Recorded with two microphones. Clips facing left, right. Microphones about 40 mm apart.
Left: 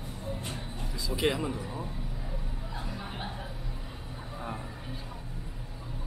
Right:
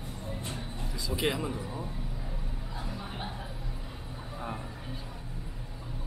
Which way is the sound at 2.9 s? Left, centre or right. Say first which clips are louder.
Even; centre.